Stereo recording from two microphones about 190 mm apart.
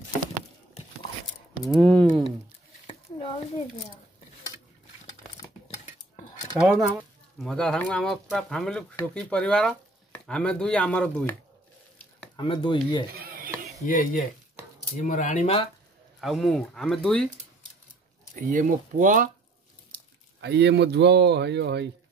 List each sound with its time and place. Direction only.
1.8 s speech: 5° left (ahead or behind)
2.9 s a sound: 30° left (ahead or behind)
5.9 s cutlery: 40° left (ahead or behind)
6.6 s speech: 10° right (ahead or behind)
7.3 s speech: 5° left (ahead or behind)
12.4 s speech: 25° left (ahead or behind)
13.1 s a sound: 50° right (ahead or behind)
13.8 s speech: 45° left (ahead or behind)
16.2 s speech: centre (ahead or behind)
18.3 s speech: 45° right (ahead or behind)
20.3 s speech: 65° right (ahead or behind)